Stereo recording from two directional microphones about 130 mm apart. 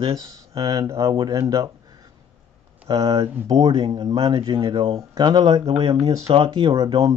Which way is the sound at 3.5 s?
40° right (ahead or behind).